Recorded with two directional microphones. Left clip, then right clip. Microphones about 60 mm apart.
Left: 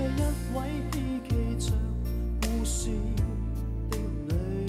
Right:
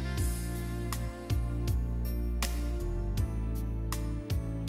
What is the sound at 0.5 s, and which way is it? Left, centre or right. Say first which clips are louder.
Music: left 7 dB; right.